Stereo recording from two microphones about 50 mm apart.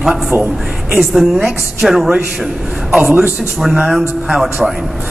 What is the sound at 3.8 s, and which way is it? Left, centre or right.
Speech, centre.